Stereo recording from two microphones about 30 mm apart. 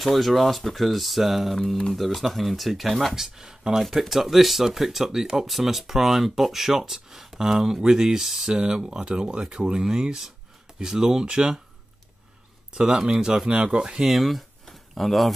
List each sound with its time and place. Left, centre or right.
0.1 s speech: centre
3.2 s speech: centre
4.1 s speech: centre
7.8 s speech: right
8.5 s speech: right
12.7 s speech: right
14.0 s speech: centre